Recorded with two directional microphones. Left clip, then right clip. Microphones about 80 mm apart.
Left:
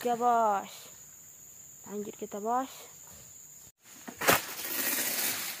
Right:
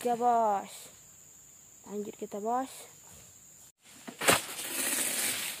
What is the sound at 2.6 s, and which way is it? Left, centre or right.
Speech, centre.